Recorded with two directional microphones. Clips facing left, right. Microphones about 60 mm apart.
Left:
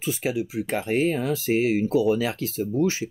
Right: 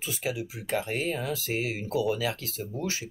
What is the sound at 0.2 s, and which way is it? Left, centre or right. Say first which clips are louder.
Speech: left 7 dB; left.